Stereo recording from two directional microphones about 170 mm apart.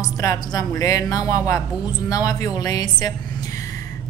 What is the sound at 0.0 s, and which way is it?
Speech, 20° left (ahead or behind).